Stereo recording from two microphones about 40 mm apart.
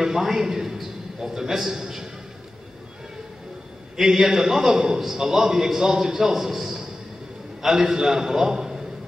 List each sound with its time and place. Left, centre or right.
0.0 s a man's voice: centre
3.9 s a man's voice: centre